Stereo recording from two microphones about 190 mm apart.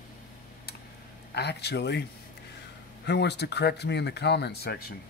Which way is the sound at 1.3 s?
60° left (ahead or behind).